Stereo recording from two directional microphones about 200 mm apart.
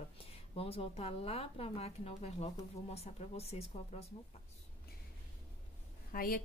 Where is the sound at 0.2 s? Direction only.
30° left (ahead or behind).